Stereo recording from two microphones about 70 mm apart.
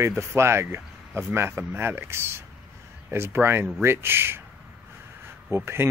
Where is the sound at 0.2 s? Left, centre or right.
Right.